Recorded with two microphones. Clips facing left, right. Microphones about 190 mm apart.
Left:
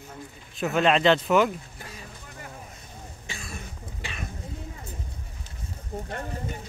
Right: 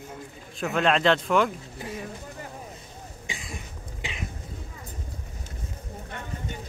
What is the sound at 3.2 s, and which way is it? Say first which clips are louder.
Cough: even; 15° right (ahead or behind).